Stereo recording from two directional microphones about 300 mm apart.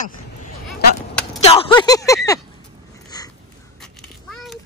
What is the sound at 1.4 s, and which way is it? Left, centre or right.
Speech, centre.